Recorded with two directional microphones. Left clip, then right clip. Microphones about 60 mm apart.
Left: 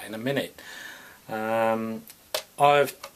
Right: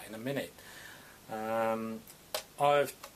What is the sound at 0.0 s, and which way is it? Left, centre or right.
Speech, left.